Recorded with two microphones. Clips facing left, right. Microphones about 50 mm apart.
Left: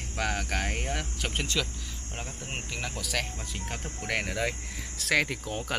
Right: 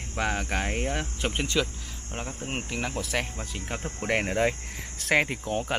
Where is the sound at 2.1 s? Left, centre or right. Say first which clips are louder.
Right 5 dB; centre.